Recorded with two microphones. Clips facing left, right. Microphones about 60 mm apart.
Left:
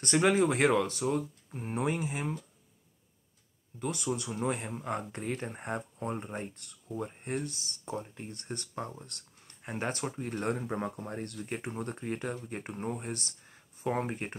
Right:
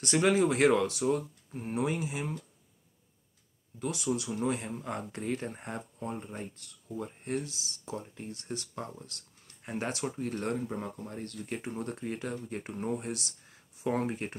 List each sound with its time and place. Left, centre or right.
0.2 s speech: centre
3.8 s speech: centre
7.4 s speech: centre
7.9 s speech: centre
9.6 s a sound: centre
9.8 s speech: centre
10.1 s speech: centre
10.7 s speech: left
11.2 s speech: centre
13.1 s a sound: centre
13.8 s speech: centre